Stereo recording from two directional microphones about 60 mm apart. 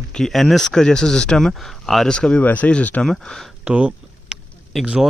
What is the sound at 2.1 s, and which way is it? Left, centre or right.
Speech, centre.